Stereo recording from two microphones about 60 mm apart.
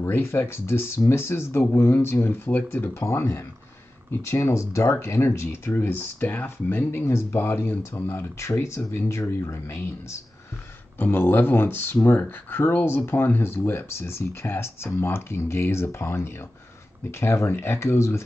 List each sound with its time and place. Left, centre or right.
0.0 s speech: left
2.9 s speech: left
7.8 s speech: left
11.1 s speech: left